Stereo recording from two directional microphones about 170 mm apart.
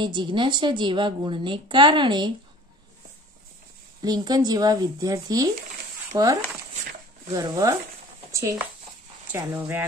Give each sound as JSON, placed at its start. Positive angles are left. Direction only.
{"t": 0.0, "sound": "a woman's voice", "side_deg": -25}
{"t": 4.0, "sound": "a woman's voice", "side_deg": -25}
{"t": 7.3, "sound": "a woman's voice", "side_deg": -20}
{"t": 8.3, "sound": "a sound", "side_deg": -15}
{"t": 9.3, "sound": "speech", "side_deg": -10}